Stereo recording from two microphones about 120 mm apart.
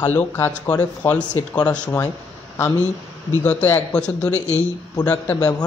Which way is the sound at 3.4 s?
15° left (ahead or behind).